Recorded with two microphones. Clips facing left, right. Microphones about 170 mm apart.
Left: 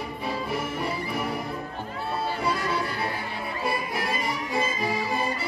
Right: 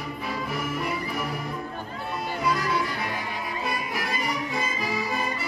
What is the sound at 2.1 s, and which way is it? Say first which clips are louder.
Music: right 1 dB; 30° left (ahead or behind).